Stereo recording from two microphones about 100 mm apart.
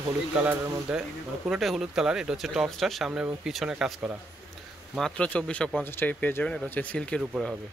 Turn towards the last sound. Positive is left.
turn(degrees=-5)  # may be behind; listen again after turning